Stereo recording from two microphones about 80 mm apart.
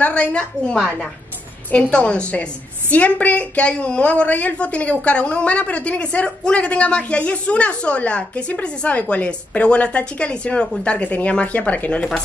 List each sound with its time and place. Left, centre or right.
0.0 s a woman's voice: centre